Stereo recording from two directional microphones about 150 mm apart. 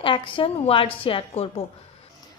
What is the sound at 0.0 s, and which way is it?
A woman's voice, 35° left (ahead or behind).